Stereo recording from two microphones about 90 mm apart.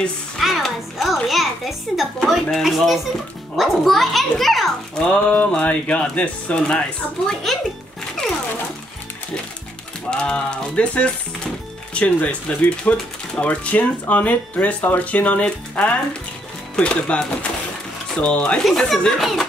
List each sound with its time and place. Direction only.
0.4 s a child's voice: centre (ahead or behind)
5.0 s speech: 15° left (ahead or behind)
10.1 s speech: 10° left (ahead or behind)
18.6 s a child's voice: centre (ahead or behind)